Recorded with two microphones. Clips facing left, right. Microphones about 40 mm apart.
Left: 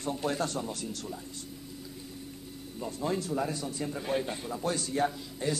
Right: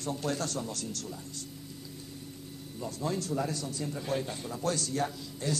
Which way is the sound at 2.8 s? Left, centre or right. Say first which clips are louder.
Left 2 dB; centre.